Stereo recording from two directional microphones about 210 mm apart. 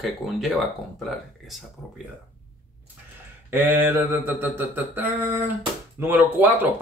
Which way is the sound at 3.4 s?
10° right (ahead or behind).